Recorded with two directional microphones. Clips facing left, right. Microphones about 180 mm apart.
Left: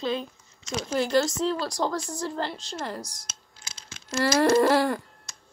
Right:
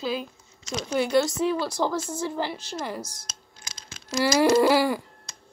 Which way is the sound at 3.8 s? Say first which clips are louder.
Right 1 dB; 15° right (ahead or behind).